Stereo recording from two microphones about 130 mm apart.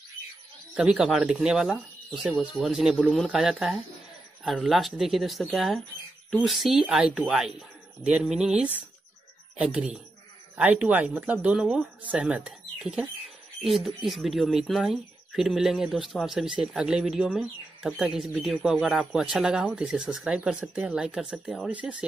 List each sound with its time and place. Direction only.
0.7 s speech: 5° right (ahead or behind)